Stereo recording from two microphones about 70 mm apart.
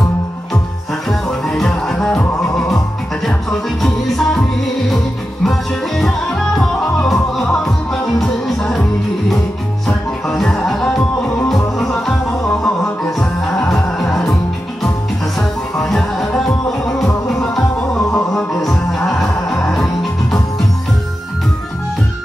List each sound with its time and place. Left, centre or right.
1.5 s music: centre
3.8 s music: centre
9.8 s music: centre
11.4 s music: centre
15.8 s music: centre
17.7 s music: centre
18.3 s music: centre